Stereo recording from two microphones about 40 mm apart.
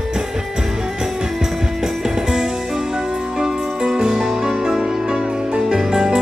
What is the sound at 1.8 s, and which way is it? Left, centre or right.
Music, centre.